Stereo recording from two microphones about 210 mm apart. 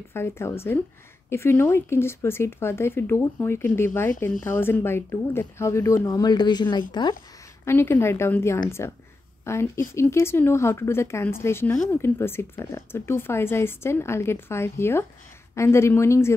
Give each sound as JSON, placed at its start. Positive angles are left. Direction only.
{"t": 0.1, "sound": "speech", "side_deg": 10}
{"t": 7.6, "sound": "speech", "side_deg": 10}